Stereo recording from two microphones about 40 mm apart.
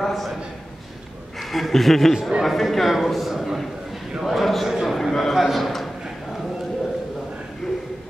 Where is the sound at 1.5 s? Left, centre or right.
Centre.